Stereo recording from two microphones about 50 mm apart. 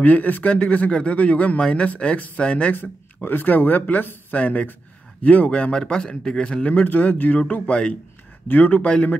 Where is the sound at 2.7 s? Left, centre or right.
Left.